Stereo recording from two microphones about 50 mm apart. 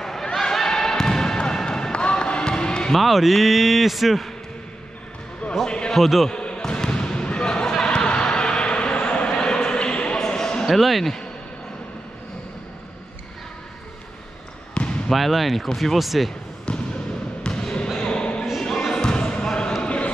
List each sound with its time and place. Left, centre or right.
0.0 s basketball bounce: centre
2.9 s a man's voice: centre
5.7 s a sound: centre
5.9 s a man's voice: centre
6.3 s basketball bounce: centre
10.7 s a man's voice: centre
14.7 s basketball bounce: centre
15.0 s a man's voice: centre
16.7 s basketball bounce: centre
18.0 s a sound: centre
18.6 s basketball bounce: centre